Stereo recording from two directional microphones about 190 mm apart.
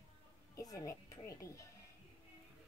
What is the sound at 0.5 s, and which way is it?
A woman's voice, 15° left (ahead or behind).